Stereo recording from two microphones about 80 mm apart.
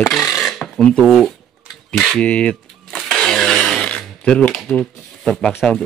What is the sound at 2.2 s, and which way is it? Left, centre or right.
Typewriter, centre.